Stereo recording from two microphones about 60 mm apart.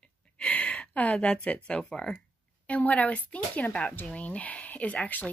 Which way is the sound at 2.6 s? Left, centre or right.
Left.